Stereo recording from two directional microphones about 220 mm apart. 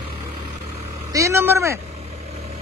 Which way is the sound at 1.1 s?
15° right (ahead or behind).